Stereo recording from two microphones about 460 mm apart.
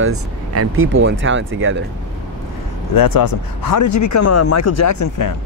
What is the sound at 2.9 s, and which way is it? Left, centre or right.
Speech, left.